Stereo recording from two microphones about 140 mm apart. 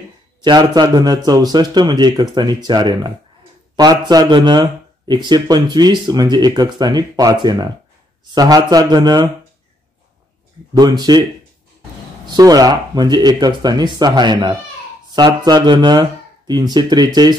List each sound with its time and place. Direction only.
0.4 s speech: 30° right (ahead or behind)
8.4 s speech: 30° right (ahead or behind)
10.7 s speech: 30° right (ahead or behind)
12.3 s speech: 30° right (ahead or behind)